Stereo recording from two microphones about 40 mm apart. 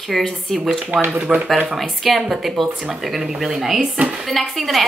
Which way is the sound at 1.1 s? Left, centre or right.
Right.